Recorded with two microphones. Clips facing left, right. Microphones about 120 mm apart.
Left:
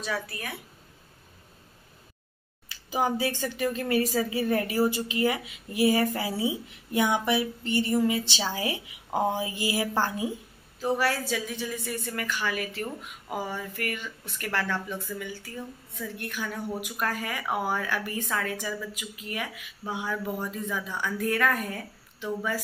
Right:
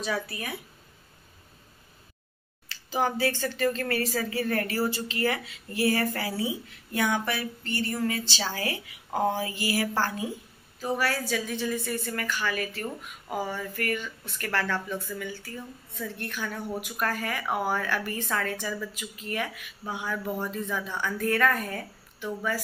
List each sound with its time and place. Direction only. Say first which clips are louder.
0.0 s a woman's voice: right 2 dB; 5° right (ahead or behind)
2.7 s speech: even; 15° left (ahead or behind)